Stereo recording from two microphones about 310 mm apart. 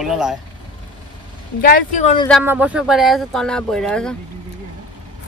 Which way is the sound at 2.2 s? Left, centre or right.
Centre.